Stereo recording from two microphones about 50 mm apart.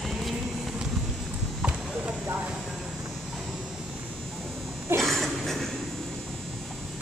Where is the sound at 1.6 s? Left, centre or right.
Right.